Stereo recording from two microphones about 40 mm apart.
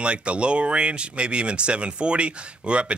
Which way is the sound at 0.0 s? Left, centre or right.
Right.